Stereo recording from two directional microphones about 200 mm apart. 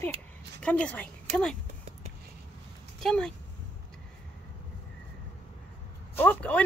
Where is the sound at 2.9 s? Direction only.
5° left (ahead or behind).